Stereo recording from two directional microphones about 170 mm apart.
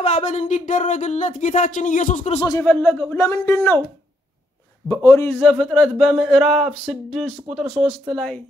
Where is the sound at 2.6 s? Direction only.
5° left (ahead or behind).